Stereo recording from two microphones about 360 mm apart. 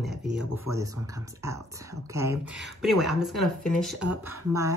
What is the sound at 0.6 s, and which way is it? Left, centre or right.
Speech, centre.